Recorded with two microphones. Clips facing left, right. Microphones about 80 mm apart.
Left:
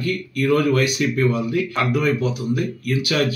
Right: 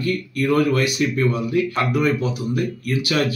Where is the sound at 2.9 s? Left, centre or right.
Right.